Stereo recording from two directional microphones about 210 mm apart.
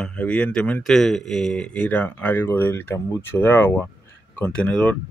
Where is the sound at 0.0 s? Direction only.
5° left (ahead or behind).